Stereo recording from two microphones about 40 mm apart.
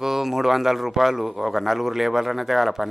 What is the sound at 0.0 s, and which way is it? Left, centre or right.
Speech, centre.